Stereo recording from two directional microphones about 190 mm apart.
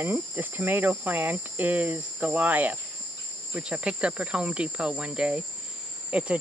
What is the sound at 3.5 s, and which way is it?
Speech, 5° right (ahead or behind).